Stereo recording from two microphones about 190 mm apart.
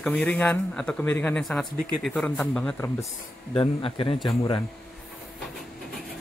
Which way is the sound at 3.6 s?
30° left (ahead or behind).